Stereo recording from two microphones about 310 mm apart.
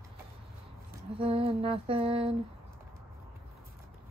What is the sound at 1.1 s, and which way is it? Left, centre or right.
Lullaby, centre.